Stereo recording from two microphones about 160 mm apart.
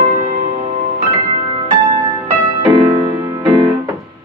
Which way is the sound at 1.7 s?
30° right (ahead or behind).